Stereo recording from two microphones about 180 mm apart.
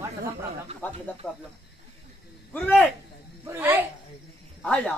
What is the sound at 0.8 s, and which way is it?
Speech, 10° left (ahead or behind).